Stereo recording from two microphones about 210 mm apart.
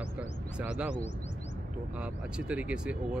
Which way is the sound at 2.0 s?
5° right (ahead or behind).